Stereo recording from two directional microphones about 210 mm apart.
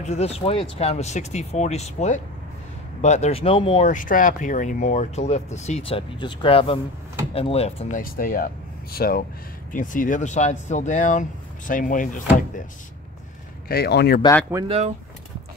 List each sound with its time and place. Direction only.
0.0 s speech: 30° left (ahead or behind)
8.0 s speech: 45° left (ahead or behind)
13.7 s speech: 50° left (ahead or behind)